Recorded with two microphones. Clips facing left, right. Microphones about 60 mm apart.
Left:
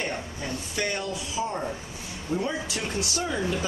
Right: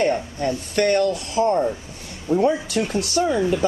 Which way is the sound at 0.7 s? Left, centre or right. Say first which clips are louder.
Right 12 dB; right.